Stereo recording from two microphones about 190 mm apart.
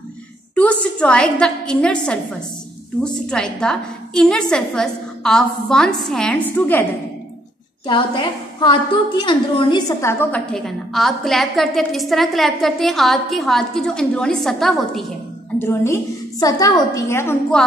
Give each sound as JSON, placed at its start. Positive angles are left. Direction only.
{"t": 0.6, "sound": "a woman's voice", "side_deg": 5}
{"t": 7.8, "sound": "a woman's voice", "side_deg": 25}
{"t": 10.3, "sound": "a woman's voice", "side_deg": 0}
{"t": 15.6, "sound": "a woman's voice", "side_deg": 15}